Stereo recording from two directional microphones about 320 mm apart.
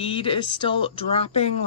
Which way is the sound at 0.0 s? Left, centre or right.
Centre.